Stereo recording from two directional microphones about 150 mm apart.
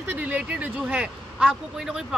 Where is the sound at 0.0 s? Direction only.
10° right (ahead or behind).